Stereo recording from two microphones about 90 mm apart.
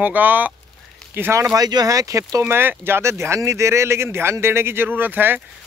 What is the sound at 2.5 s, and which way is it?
Speech, 25° right (ahead or behind).